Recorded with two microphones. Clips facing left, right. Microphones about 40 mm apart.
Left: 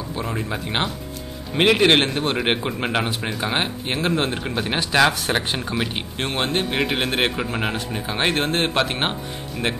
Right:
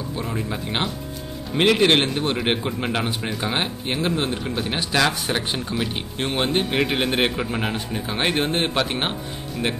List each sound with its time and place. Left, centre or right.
0.2 s speech: centre
3.2 s speech: centre
4.2 s a man's voice: left